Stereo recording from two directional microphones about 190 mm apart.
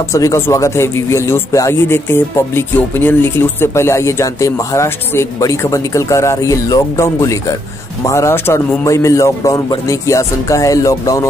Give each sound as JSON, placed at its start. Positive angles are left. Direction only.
{"t": 0.1, "sound": "speech", "side_deg": 15}